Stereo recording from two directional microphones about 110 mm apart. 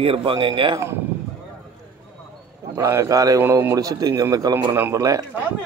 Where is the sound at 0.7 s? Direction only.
25° right (ahead or behind).